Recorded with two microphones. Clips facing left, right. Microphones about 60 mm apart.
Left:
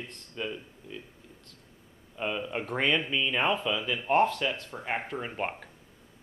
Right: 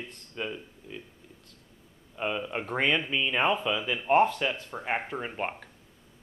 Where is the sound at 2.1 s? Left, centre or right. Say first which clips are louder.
Right 1 dB; centre.